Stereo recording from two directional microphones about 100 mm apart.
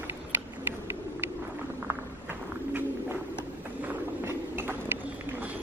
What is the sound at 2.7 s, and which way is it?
Walk, 20° right (ahead or behind).